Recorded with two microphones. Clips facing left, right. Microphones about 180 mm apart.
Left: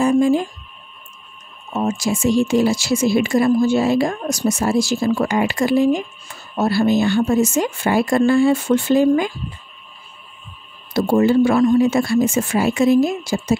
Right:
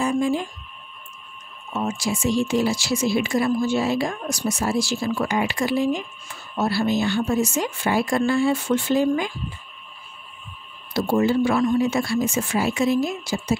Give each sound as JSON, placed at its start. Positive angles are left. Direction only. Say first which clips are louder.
{"t": 0.0, "sound": "speech", "louder": "left 7 dB", "side_deg": 45}
{"t": 1.7, "sound": "speech", "louder": "left 5 dB", "side_deg": 40}
{"t": 10.9, "sound": "speech", "louder": "left 5 dB", "side_deg": 50}